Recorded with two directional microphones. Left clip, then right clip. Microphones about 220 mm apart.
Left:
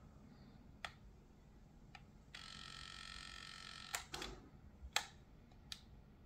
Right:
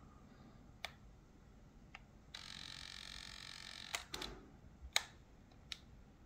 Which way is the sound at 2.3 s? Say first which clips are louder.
Right 2 dB; 15° right (ahead or behind).